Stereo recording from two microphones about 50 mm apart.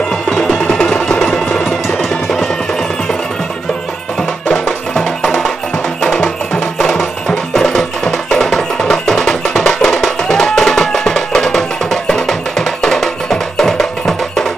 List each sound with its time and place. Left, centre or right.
0.6 s music: left; by 2.5 s centre
6.0 s music: left
7.0 s music: centre